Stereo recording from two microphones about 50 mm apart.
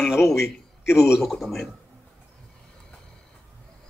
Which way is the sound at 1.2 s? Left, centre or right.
Centre.